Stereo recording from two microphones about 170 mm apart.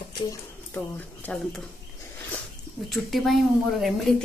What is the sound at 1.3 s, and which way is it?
Speech, 10° left (ahead or behind).